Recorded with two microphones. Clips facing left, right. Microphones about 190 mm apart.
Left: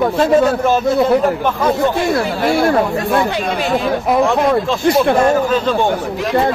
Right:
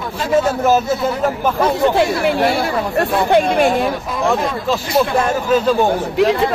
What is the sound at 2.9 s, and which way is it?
Speech, 55° right (ahead or behind).